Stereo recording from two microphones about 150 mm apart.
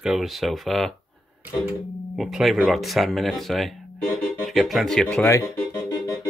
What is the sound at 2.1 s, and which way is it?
Speech, centre (ahead or behind).